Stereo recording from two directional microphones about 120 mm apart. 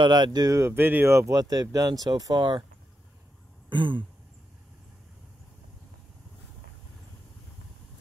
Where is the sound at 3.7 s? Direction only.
45° right (ahead or behind).